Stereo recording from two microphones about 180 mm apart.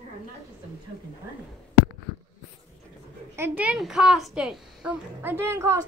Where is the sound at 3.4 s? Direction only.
10° right (ahead or behind).